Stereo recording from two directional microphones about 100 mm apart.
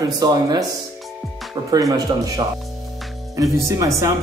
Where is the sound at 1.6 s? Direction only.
35° right (ahead or behind).